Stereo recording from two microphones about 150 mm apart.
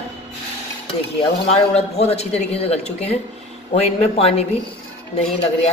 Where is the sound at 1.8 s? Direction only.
45° left (ahead or behind).